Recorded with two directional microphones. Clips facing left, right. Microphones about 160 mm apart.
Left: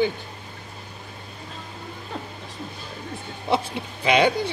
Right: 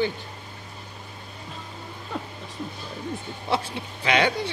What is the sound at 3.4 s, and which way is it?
Speech, 15° left (ahead or behind).